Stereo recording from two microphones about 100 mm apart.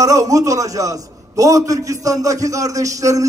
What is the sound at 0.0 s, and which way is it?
A man's voice, 35° right (ahead or behind).